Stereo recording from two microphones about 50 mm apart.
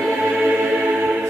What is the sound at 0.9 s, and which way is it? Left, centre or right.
Music, right.